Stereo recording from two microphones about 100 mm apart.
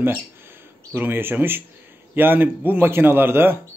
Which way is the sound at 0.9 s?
20° right (ahead or behind).